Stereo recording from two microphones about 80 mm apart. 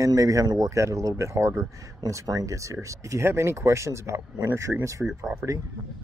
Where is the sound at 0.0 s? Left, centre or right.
Right.